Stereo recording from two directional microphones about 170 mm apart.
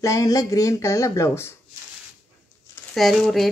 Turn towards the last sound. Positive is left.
turn(degrees=0)  # may be behind; listen again after turning